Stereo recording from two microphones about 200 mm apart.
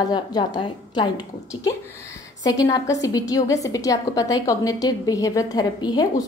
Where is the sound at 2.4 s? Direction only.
15° left (ahead or behind).